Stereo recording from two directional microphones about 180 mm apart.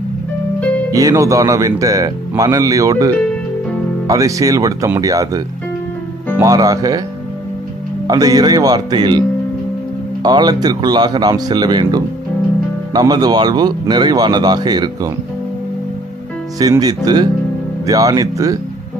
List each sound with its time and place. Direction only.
0.9 s speech: 20° right (ahead or behind)
4.1 s speech: 20° right (ahead or behind)
6.4 s speech: 20° right (ahead or behind)
8.1 s speech: 20° right (ahead or behind)
10.2 s speech: 25° right (ahead or behind)
16.5 s speech: 20° right (ahead or behind)